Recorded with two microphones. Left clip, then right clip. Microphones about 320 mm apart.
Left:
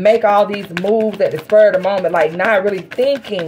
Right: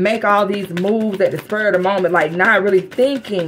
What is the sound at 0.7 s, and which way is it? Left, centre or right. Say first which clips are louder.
Speech: left 4 dB; centre.